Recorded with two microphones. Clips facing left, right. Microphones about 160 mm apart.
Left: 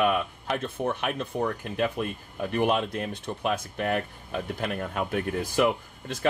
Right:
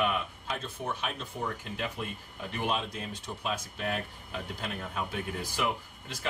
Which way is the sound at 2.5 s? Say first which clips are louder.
Left 7 dB; 60° left (ahead or behind).